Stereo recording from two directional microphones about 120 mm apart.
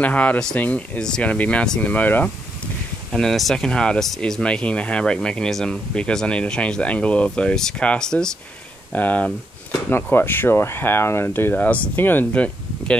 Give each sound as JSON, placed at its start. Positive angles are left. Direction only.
{"t": 0.0, "sound": "speech", "side_deg": 10}
{"t": 3.1, "sound": "speech", "side_deg": 5}